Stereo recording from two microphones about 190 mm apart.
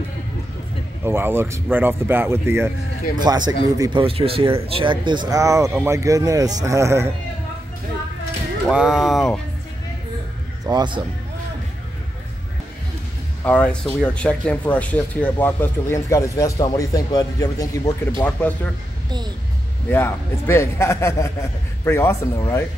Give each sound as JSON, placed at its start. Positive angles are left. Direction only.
{"t": 1.0, "sound": "speech", "side_deg": -10}
{"t": 4.0, "sound": "speech", "side_deg": -30}
{"t": 8.6, "sound": "speech", "side_deg": 0}
{"t": 10.6, "sound": "a man's voice", "side_deg": -25}
{"t": 13.4, "sound": "speech", "side_deg": 5}
{"t": 19.9, "sound": "speech", "side_deg": 10}